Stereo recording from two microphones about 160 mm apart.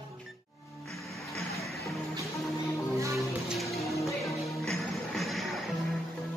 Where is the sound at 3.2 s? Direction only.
Centre (ahead or behind).